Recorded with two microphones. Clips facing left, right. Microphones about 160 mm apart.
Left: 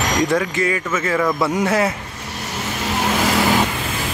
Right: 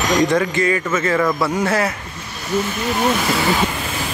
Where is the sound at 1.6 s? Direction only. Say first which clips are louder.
Left 1 dB; 20° left (ahead or behind).